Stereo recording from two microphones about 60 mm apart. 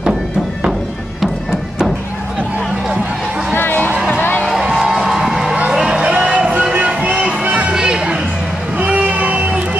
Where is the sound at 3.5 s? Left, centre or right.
Left.